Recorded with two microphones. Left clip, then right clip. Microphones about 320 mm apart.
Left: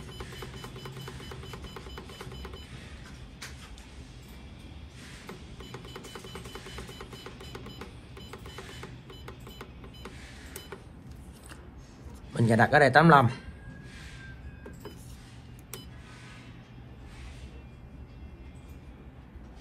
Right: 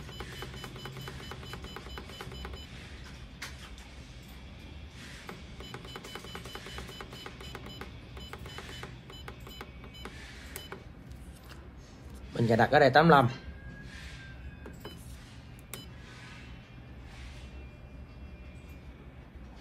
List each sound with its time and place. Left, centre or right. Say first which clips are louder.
7.5 s music: even; centre
9.2 s a sound: right 1 dB; centre
12.4 s a man's voice: left 2 dB; left